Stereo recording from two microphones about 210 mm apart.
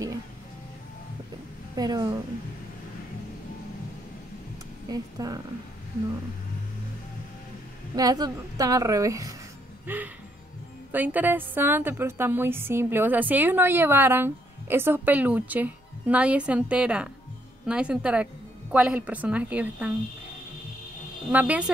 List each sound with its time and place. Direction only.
1.8 s a woman's voice: 20° right (ahead or behind)
4.8 s speech: 15° right (ahead or behind)
7.9 s a woman's voice: 15° right (ahead or behind)
21.3 s a woman's voice: 5° right (ahead or behind)